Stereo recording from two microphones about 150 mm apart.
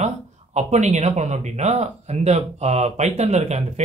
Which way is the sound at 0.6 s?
50° right (ahead or behind).